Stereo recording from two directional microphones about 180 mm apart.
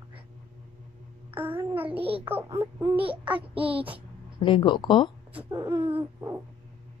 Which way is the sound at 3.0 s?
10° right (ahead or behind).